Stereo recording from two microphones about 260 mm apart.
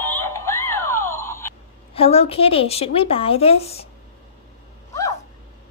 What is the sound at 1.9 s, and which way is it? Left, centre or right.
A woman's voice, left.